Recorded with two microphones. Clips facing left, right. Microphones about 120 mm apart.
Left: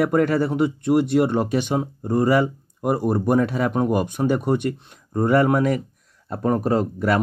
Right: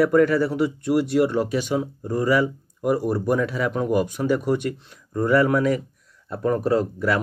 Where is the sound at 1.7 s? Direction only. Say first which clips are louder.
Left 2 dB; 30° left (ahead or behind).